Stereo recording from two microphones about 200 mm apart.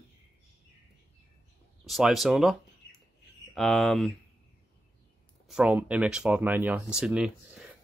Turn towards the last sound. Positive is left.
turn(degrees=-5)  # may be behind; listen again after turning